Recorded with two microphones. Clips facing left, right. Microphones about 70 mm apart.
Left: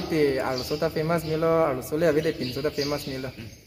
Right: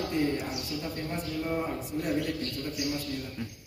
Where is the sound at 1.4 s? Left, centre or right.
Left.